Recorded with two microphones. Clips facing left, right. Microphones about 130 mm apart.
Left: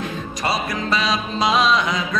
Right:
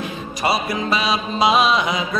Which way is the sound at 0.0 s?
10° right (ahead or behind).